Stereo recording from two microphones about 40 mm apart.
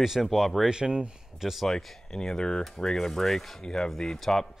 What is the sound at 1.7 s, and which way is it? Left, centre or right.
Speech, centre.